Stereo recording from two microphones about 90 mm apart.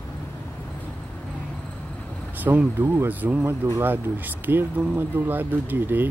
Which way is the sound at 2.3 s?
20° right (ahead or behind).